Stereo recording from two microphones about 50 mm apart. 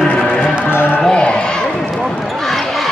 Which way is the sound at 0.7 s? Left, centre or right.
Left.